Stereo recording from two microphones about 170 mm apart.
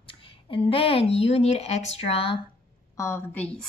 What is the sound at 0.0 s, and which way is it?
Speech, 30° left (ahead or behind).